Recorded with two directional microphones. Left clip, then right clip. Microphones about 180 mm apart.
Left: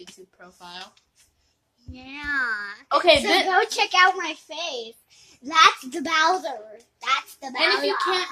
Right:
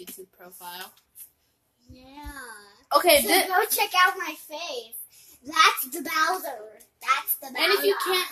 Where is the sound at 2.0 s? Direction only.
50° left (ahead or behind).